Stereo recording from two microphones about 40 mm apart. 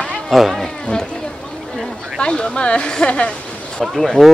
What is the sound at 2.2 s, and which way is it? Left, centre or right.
Speech, left.